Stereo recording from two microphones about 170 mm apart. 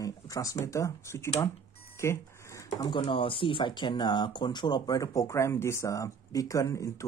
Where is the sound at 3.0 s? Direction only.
30° left (ahead or behind).